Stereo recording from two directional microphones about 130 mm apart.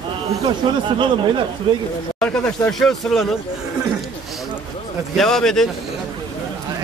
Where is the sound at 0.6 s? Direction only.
40° right (ahead or behind).